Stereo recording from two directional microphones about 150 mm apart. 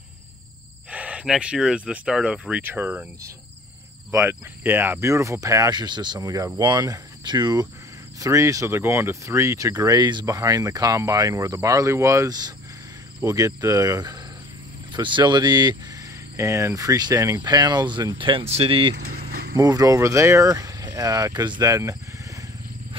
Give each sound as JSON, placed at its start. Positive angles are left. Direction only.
{"t": 0.8, "sound": "speech", "side_deg": -10}
{"t": 4.1, "sound": "speech", "side_deg": -20}
{"t": 18.9, "sound": "vehicle", "side_deg": -85}
{"t": 19.5, "sound": "speech", "side_deg": -25}